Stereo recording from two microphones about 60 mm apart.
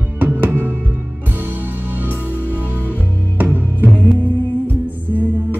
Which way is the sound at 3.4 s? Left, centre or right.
Right.